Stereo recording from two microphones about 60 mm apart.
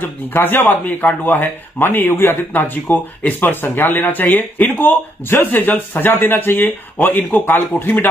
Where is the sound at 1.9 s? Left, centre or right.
Left.